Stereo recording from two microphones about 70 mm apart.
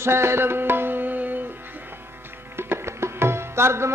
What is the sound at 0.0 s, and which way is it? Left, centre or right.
Music, right.